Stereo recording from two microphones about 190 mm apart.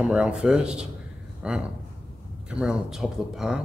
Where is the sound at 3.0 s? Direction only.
Centre (ahead or behind).